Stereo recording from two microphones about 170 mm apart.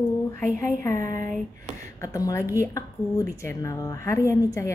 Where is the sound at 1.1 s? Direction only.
50° right (ahead or behind).